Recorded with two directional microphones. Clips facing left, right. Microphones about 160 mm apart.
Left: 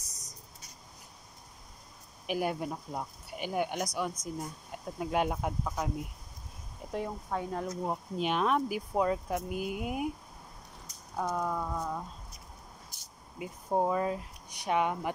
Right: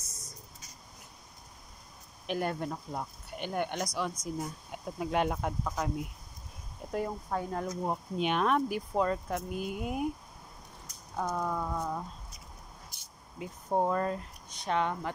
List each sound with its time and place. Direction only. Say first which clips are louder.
0.0 s a sound: right 2 dB; 40° left (ahead or behind)
2.2 s speech: left 1 dB; 5° left (ahead or behind)
11.1 s speech: even; 5° left (ahead or behind)
13.4 s speech: even; 5° left (ahead or behind)